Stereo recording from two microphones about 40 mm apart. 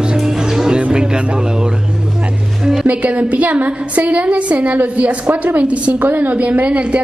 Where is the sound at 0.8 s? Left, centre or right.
Right.